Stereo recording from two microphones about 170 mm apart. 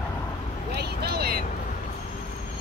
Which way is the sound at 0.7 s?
75° right (ahead or behind).